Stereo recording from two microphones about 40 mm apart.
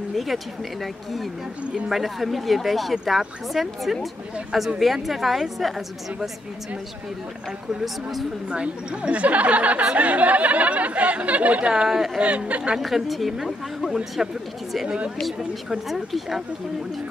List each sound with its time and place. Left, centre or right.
0.1 s speech: centre
7.8 s speech: centre
8.5 s speech: right
12.7 s speech: centre
14.9 s speech: right
15.9 s speech: centre